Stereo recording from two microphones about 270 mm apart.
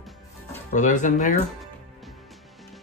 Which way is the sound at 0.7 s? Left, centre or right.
Left.